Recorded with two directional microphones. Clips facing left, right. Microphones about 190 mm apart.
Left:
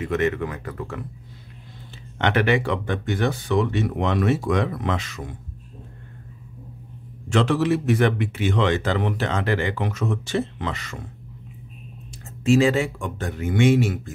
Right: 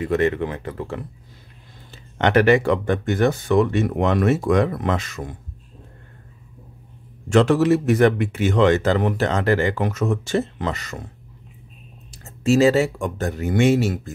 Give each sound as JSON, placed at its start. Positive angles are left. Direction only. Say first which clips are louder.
{"t": 0.0, "sound": "speech", "louder": "right 3 dB", "side_deg": -35}
{"t": 1.9, "sound": "a man's voice", "louder": "right 3 dB", "side_deg": -40}
{"t": 7.2, "sound": "a man's voice", "louder": "right 5 dB", "side_deg": -45}
{"t": 12.4, "sound": "speech", "louder": "right 2 dB", "side_deg": -40}